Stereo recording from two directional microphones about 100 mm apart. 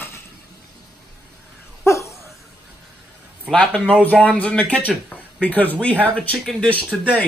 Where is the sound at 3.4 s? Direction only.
10° left (ahead or behind).